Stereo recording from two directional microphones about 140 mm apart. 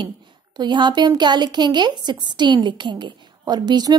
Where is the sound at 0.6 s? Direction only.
30° right (ahead or behind).